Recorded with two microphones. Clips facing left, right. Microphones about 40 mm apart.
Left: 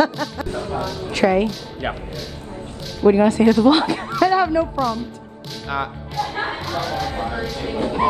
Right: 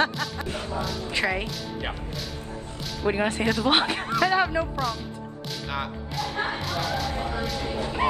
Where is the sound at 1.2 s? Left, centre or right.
Centre.